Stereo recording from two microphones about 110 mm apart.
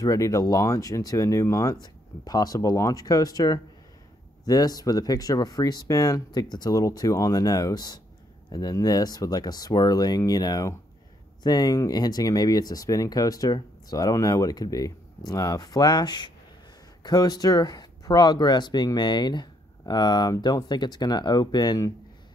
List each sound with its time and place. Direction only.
0.0 s speech: 30° left (ahead or behind)